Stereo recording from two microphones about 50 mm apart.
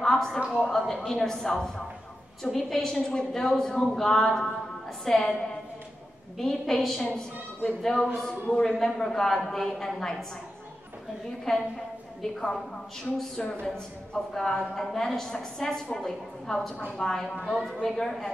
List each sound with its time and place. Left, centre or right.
0.0 s a sound: centre
0.7 s a woman's voice: centre
11.5 s a woman's voice: centre
13.4 s a woman's voice: left